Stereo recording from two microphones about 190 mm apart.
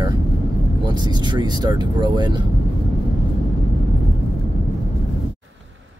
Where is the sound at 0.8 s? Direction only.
25° right (ahead or behind).